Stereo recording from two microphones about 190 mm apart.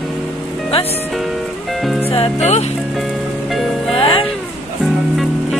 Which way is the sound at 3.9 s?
25° left (ahead or behind).